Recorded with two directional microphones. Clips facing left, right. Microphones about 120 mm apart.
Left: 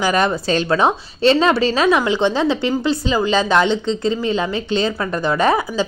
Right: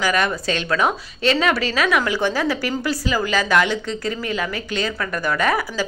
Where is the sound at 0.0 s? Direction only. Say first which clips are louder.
Left 3 dB; 30° left (ahead or behind).